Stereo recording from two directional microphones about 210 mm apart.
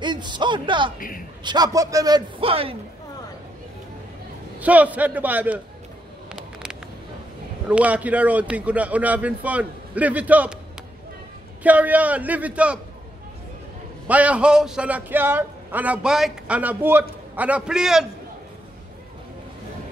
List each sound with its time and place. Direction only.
0.0 s speech: 20° right (ahead or behind)
0.9 s a man's voice: 40° left (ahead or behind)
1.4 s a man's voice: 20° right (ahead or behind)
4.6 s speech: 5° right (ahead or behind)
6.2 s a sound: 5° right (ahead or behind)
7.7 s speech: 5° right (ahead or behind)
11.6 s speech: 5° right (ahead or behind)
14.0 s a man's voice: 5° right (ahead or behind)